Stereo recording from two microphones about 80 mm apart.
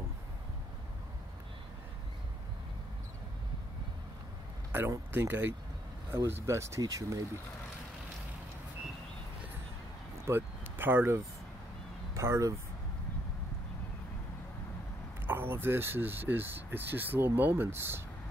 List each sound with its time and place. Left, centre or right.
4.7 s speech: right
10.2 s a sound: right
12.1 s speech: right
15.2 s speech: right